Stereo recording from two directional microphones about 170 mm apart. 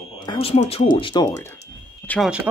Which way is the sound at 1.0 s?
25° left (ahead or behind).